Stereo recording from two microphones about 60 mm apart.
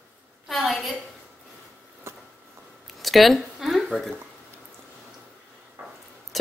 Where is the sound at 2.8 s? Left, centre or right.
Centre.